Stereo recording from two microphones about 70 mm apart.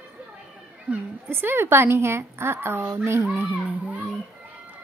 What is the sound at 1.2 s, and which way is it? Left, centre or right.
A woman's voice, right.